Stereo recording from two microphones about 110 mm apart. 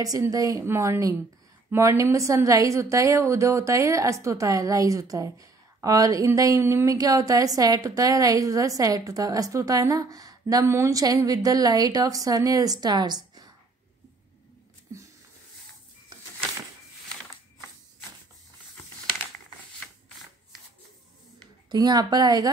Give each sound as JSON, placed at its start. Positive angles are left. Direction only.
{"t": 0.0, "sound": "a woman's voice", "side_deg": -30}
{"t": 14.9, "sound": "a sound", "side_deg": -30}
{"t": 21.6, "sound": "a woman's voice", "side_deg": -40}